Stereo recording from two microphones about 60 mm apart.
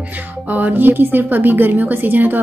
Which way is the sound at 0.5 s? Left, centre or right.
Right.